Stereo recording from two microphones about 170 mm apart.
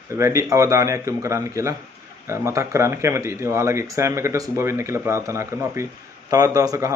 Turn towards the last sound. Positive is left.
turn(degrees=-20)  # may be behind; listen again after turning